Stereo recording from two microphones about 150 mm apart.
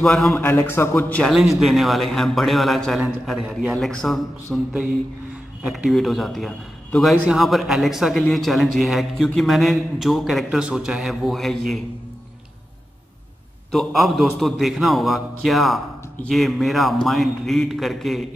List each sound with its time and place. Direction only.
0.0 s a man's voice: centre (ahead or behind)
0.3 s a man's voice: 20° left (ahead or behind)
1.2 s a man's voice: 5° right (ahead or behind)
5.6 s a man's voice: centre (ahead or behind)
13.7 s a man's voice: centre (ahead or behind)